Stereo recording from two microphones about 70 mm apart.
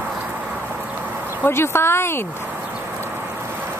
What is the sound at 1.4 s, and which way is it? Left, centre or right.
Speech, left.